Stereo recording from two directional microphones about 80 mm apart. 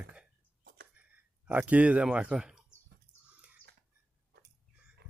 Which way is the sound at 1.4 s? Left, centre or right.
Centre.